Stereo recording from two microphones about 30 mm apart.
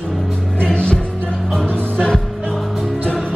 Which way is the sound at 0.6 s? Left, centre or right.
Left.